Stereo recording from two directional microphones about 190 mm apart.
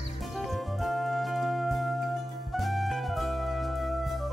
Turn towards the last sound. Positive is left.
turn(degrees=0)  # may be behind; listen again after turning